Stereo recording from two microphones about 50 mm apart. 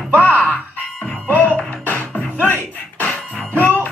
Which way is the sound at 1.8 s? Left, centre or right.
Left.